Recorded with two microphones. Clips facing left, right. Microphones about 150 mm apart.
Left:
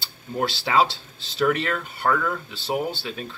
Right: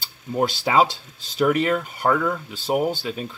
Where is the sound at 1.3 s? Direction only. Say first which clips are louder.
Right 3 dB; 10° right (ahead or behind).